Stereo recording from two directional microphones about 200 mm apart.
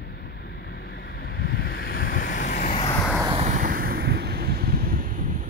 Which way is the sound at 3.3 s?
40° right (ahead or behind).